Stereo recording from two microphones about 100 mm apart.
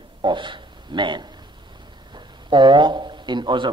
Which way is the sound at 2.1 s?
50° right (ahead or behind).